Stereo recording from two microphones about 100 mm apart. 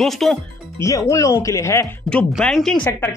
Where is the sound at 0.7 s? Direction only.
30° left (ahead or behind).